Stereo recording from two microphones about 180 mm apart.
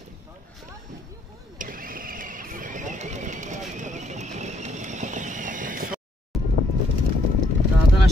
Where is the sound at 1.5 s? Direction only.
50° right (ahead or behind).